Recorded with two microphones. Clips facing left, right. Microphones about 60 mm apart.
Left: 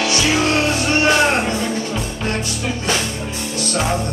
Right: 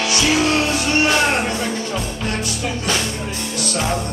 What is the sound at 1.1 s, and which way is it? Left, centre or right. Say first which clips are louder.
Music: left 2 dB; centre.